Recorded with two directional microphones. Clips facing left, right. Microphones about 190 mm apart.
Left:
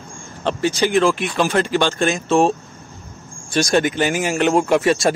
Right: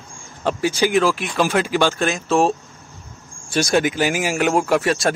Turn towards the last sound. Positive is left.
turn(degrees=0)  # may be behind; listen again after turning